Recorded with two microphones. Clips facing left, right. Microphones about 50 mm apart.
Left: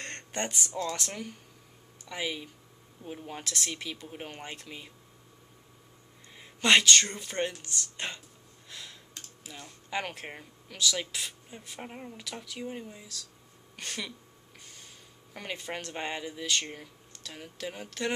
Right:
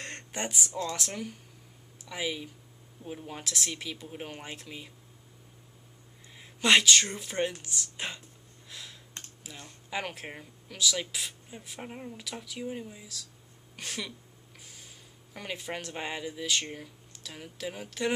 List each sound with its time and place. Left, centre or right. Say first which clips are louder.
0.0 s speech: left 1 dB; centre
6.3 s speech: even; centre
8.6 s computer keyboard: even; centre
9.2 s computer keyboard: right 3 dB; right
9.8 s speech: left 1 dB; centre
14.6 s a sound: even; centre
15.3 s speech: even; centre